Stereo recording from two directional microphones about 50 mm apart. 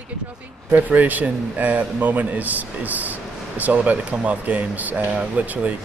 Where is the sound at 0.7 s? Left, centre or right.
Right.